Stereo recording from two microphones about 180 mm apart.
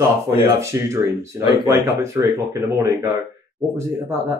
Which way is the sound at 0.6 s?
15° right (ahead or behind).